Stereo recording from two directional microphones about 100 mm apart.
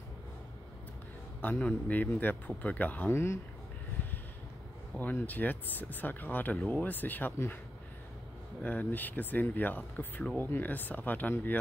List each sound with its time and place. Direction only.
1.4 s speech: 15° left (ahead or behind)
4.9 s speech: 15° left (ahead or behind)
8.6 s speech: 15° left (ahead or behind)